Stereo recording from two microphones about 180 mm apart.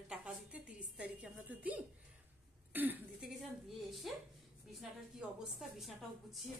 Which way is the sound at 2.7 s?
10° right (ahead or behind).